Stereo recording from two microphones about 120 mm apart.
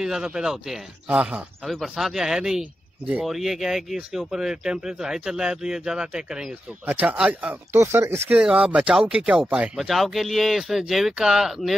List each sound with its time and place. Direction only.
0.0 s speech: 5° right (ahead or behind)
1.6 s speech: centre (ahead or behind)
7.8 s speech: 20° right (ahead or behind)
8.4 s speech: 10° right (ahead or behind)
9.8 s speech: centre (ahead or behind)